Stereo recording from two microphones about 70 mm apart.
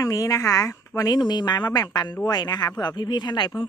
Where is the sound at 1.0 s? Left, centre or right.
Left.